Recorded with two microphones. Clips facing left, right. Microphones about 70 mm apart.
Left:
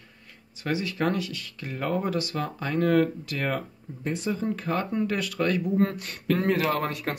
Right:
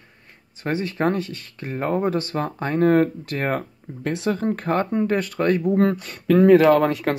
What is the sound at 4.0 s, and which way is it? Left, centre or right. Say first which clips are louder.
Speech: right 5 dB; right.